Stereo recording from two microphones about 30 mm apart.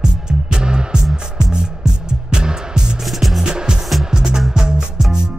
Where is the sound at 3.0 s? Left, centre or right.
Centre.